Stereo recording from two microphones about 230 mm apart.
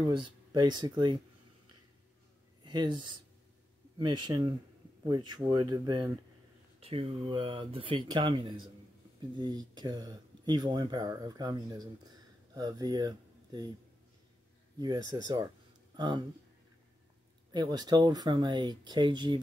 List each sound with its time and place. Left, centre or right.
0.0 s speech: centre
2.6 s speech: centre
14.8 s speech: centre
17.5 s speech: centre